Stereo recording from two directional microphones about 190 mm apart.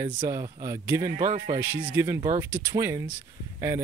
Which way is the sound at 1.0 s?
40° right (ahead or behind).